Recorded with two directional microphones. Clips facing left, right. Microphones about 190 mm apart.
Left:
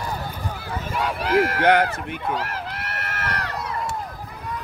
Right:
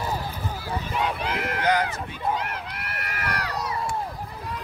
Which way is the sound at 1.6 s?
60° left (ahead or behind).